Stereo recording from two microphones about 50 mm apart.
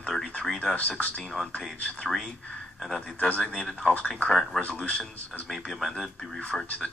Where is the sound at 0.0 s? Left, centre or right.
Centre.